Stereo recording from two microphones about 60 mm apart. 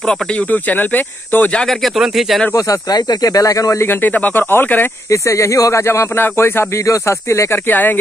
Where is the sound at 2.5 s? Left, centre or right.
Left.